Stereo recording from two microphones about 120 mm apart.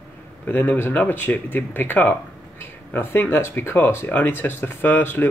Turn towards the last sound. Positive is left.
turn(degrees=20)  # may be behind; listen again after turning